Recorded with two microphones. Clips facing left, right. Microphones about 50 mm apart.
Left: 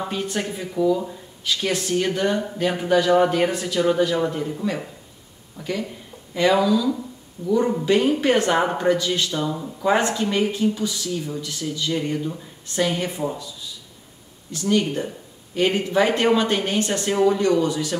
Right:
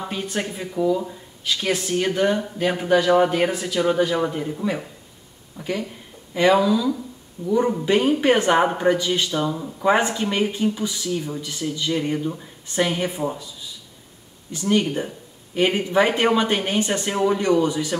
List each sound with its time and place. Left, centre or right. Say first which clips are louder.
0.1 s a man's voice: left 1 dB; centre
5.6 s speech: even; centre